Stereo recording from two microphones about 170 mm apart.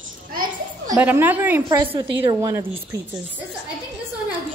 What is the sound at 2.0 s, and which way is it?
Speech, 30° right (ahead or behind).